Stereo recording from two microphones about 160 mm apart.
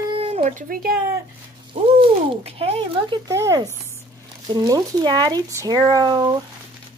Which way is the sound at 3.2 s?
20° right (ahead or behind).